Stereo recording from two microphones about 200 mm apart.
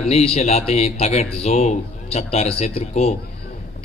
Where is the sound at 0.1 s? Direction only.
30° left (ahead or behind).